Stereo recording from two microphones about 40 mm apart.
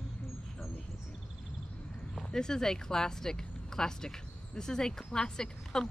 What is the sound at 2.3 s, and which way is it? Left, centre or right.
Speech, centre.